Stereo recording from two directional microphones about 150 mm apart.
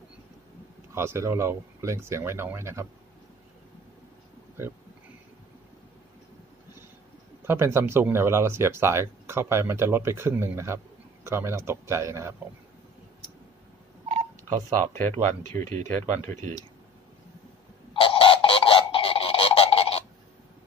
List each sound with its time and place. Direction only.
0.9 s speech: 15° right (ahead or behind)
7.4 s speech: 15° right (ahead or behind)
14.9 s speech: 15° left (ahead or behind)
17.9 s goose: 35° left (ahead or behind)